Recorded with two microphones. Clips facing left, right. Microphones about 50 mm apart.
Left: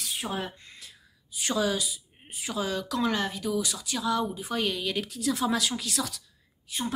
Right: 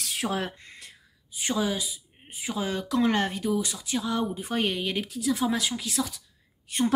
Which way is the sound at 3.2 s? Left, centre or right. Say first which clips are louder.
Right 3 dB; right.